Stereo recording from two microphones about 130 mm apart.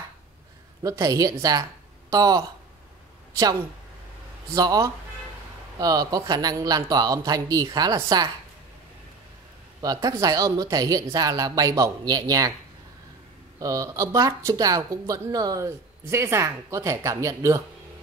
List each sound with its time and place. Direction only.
0.8 s a woman's voice: 25° right (ahead or behind)
4.6 s speech: 30° right (ahead or behind)
9.8 s speech: 25° right (ahead or behind)
13.6 s speech: 25° right (ahead or behind)